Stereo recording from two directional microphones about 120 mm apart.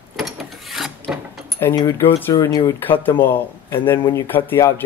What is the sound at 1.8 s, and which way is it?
Speech, 20° left (ahead or behind).